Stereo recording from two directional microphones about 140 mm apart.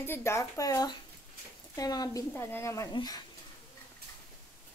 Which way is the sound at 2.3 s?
15° left (ahead or behind).